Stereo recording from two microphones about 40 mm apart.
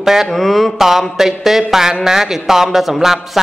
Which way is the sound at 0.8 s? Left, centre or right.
Centre.